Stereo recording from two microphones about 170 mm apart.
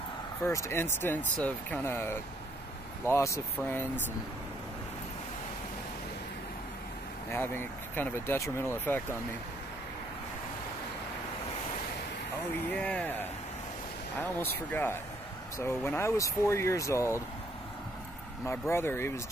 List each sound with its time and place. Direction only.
0.4 s speech: 15° left (ahead or behind)
7.2 s speech: 10° left (ahead or behind)
12.7 s speech: 10° left (ahead or behind)
14.4 s speech: 10° left (ahead or behind)
18.4 s speech: 15° left (ahead or behind)